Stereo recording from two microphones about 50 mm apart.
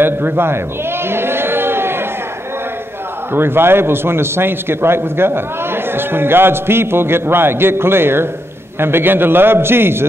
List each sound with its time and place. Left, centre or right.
0.0 s a man's voice: right
1.0 s a sound: right
3.3 s a man's voice: right